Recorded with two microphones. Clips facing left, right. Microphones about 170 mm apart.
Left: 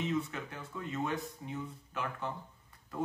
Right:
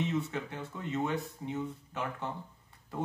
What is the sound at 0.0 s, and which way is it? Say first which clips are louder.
Speech: right 2 dB; 25° right (ahead or behind).